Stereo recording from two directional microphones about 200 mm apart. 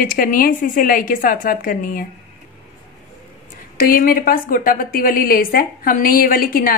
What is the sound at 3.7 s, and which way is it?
A woman's voice, 45° left (ahead or behind).